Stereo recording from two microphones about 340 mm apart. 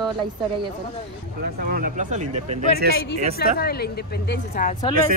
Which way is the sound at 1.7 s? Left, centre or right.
Right.